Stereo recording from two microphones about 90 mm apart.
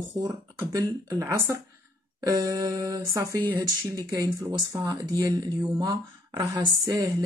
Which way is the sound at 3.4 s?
50° right (ahead or behind).